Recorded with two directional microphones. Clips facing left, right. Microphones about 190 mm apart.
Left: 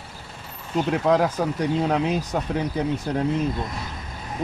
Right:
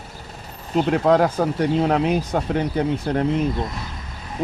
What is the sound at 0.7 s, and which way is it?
Speech, 55° right (ahead or behind).